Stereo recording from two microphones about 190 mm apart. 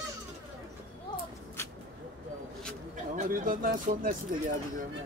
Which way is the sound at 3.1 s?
45° right (ahead or behind).